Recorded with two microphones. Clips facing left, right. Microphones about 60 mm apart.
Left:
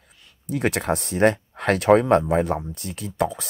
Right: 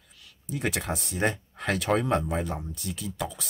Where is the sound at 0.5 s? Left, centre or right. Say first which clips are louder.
Left 7 dB; left.